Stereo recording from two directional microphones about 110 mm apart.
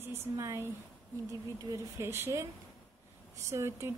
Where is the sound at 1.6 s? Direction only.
25° right (ahead or behind).